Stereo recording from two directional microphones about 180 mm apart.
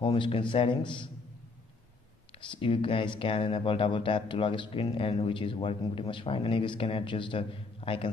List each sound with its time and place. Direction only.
0.0 s speech: 30° left (ahead or behind)
2.3 s speech: 30° left (ahead or behind)